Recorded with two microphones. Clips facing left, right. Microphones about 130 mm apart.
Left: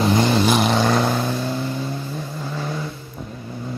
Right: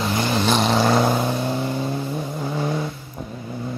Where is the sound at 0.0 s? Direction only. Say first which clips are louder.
Left 5 dB; 20° left (ahead or behind).